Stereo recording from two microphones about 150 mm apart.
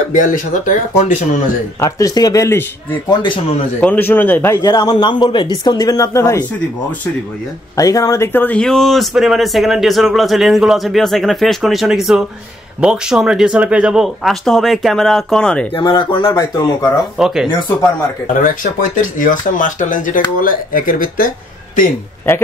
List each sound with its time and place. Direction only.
0.1 s speech: 60° left (ahead or behind)
1.8 s a man's voice: 20° left (ahead or behind)
3.1 s speech: 35° left (ahead or behind)
3.8 s a man's voice: 10° left (ahead or behind)
7.7 s speech: 20° left (ahead or behind); by 15.7 s 5° left (ahead or behind)
15.7 s a man's voice: 30° left (ahead or behind)
17.2 s speech: 5° right (ahead or behind)
18.2 s speech: 65° left (ahead or behind)